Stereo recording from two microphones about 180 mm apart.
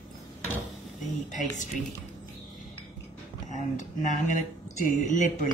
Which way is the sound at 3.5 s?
40° left (ahead or behind).